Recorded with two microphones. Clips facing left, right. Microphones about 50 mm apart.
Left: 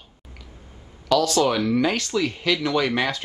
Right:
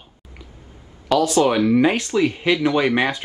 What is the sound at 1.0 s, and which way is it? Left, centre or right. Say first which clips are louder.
Speech: right 3 dB; right.